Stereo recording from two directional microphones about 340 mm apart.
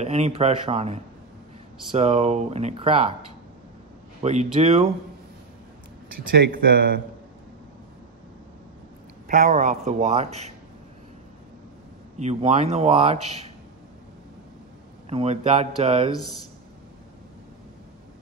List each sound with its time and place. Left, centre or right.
0.0 s speech: centre
2.0 s speech: centre
4.2 s speech: centre
6.3 s a man's voice: right
9.3 s a man's voice: right
12.2 s a man's voice: centre
15.0 s speech: centre